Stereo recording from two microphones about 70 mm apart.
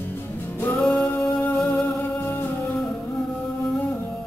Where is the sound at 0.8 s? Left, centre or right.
Centre.